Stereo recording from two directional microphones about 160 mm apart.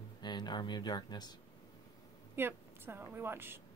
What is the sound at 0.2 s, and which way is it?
Speech, 25° left (ahead or behind).